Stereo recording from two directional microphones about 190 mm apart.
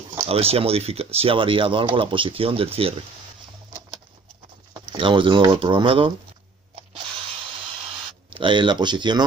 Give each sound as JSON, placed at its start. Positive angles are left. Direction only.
{"t": 0.3, "sound": "speech", "side_deg": -30}
{"t": 4.9, "sound": "speech", "side_deg": -25}
{"t": 8.3, "sound": "speech", "side_deg": -25}